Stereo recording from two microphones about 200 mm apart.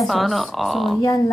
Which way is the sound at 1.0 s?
15° left (ahead or behind).